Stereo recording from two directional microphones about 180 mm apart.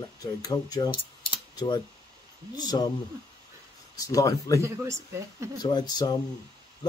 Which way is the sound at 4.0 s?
20° left (ahead or behind).